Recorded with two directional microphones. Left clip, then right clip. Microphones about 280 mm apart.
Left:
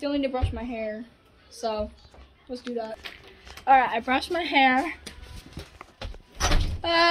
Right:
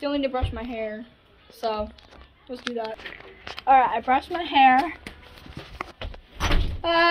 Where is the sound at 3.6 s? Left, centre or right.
Centre.